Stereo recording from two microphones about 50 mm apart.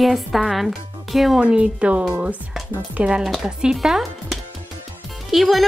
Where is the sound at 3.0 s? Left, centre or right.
Right.